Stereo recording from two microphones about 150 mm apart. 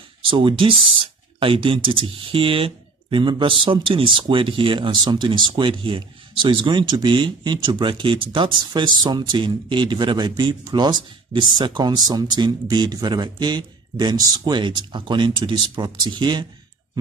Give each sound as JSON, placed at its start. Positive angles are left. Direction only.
{"t": 0.2, "sound": "speech", "side_deg": -35}